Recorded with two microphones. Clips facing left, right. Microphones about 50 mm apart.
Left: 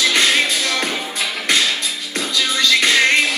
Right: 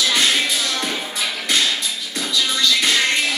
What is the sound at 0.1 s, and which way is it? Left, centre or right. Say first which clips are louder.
Music: left 2 dB; left.